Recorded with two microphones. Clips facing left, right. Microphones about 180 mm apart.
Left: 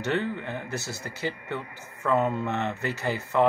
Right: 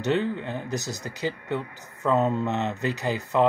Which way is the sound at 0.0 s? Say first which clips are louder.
Right 3 dB; 15° right (ahead or behind).